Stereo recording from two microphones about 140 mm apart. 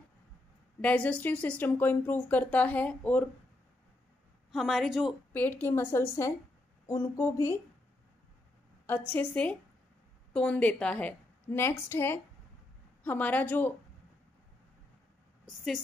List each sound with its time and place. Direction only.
0.7 s speech: 10° left (ahead or behind)
4.5 s a woman's voice: centre (ahead or behind)
5.3 s a woman's voice: 10° left (ahead or behind)
8.8 s speech: 15° left (ahead or behind)